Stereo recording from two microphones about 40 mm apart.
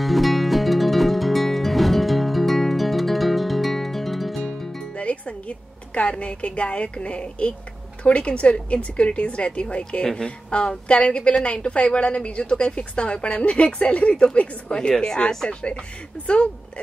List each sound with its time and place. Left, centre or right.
0.0 s music: centre
4.9 s a sound: left
8.0 s a woman's voice: left